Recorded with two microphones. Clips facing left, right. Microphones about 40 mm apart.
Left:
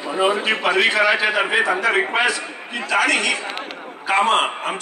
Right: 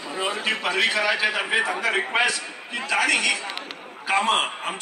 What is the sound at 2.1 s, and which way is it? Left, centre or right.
A man's voice, centre.